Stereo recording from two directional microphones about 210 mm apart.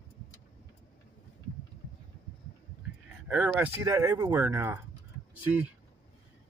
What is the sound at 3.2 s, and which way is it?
Speech, 5° right (ahead or behind).